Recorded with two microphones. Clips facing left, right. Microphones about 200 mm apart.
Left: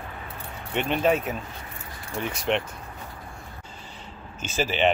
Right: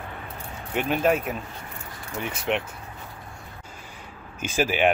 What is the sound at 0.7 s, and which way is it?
Speech, 5° right (ahead or behind).